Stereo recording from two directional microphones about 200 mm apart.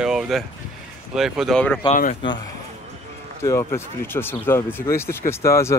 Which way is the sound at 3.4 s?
15° left (ahead or behind).